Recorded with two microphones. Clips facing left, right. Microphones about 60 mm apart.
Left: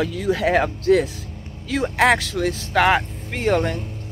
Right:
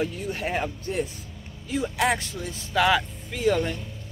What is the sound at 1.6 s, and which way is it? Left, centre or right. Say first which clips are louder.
Speech: left 7 dB; left.